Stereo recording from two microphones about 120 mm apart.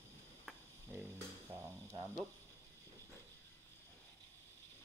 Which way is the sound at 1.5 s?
20° right (ahead or behind).